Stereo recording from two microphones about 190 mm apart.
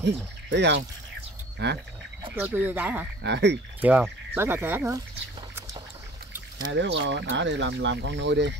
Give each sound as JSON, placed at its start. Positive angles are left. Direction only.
{"t": 0.0, "sound": "speech", "side_deg": -65}
{"t": 2.3, "sound": "speech", "side_deg": -10}
{"t": 3.2, "sound": "speech", "side_deg": -65}
{"t": 3.8, "sound": "speech", "side_deg": -10}
{"t": 6.7, "sound": "speech", "side_deg": -70}